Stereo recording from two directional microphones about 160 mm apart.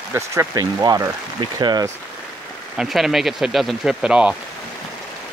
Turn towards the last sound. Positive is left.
turn(degrees=-5)  # may be behind; listen again after turning